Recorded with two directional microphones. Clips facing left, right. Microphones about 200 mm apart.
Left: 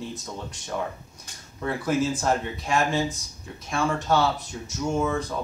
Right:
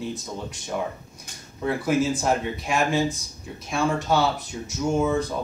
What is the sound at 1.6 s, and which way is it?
Speech, 10° right (ahead or behind).